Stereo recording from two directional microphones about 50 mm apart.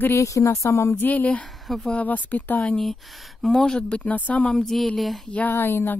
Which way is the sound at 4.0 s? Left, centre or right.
Left.